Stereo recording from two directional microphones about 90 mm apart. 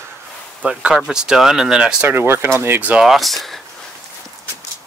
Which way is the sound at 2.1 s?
25° right (ahead or behind).